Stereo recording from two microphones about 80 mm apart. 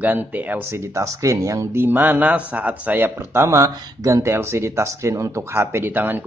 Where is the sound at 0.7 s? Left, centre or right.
Right.